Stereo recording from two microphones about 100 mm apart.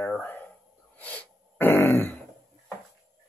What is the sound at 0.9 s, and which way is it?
Throat clearing, 15° left (ahead or behind).